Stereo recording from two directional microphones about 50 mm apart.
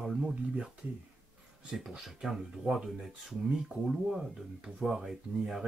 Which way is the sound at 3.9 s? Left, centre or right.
Centre.